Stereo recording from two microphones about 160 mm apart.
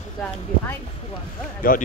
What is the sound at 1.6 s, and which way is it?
Speech, 60° left (ahead or behind).